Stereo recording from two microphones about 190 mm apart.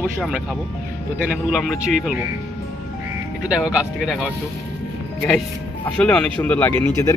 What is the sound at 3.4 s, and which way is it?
Speech, 5° right (ahead or behind).